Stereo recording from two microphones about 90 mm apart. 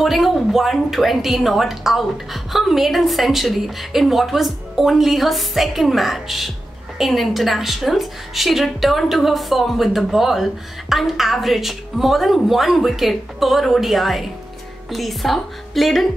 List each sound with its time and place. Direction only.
0.0 s a woman's voice: centre (ahead or behind)